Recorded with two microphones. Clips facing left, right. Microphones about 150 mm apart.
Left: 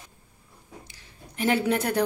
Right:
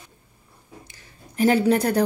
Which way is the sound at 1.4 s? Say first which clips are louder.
Right 6 dB; 40° right (ahead or behind).